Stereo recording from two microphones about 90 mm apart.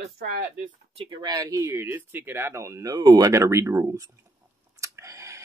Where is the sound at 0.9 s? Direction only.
80° right.